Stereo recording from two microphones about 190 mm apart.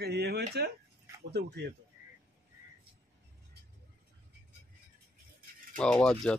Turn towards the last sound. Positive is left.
turn(degrees=5)  # may be behind; listen again after turning